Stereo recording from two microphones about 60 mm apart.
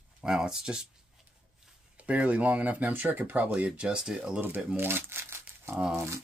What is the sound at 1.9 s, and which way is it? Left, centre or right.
Speech, right.